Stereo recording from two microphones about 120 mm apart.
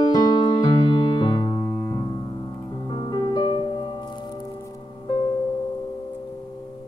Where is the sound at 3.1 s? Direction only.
40° left (ahead or behind).